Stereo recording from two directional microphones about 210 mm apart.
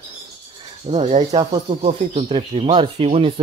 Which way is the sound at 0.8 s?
30° right (ahead or behind).